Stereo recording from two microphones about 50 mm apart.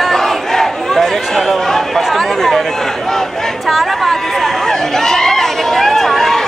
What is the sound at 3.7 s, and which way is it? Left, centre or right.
Chatter, centre.